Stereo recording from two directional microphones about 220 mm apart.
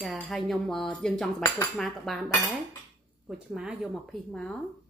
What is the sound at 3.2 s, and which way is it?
A woman's voice, 5° right (ahead or behind).